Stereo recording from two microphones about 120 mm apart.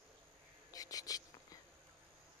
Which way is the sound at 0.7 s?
30° left (ahead or behind).